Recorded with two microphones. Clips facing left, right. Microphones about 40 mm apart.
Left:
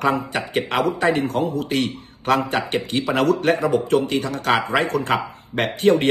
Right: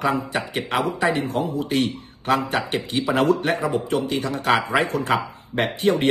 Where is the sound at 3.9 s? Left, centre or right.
Left.